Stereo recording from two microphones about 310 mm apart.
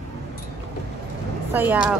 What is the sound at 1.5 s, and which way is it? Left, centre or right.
Speech, centre.